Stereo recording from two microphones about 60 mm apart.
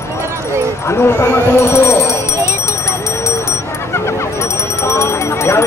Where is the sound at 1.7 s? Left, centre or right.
Left.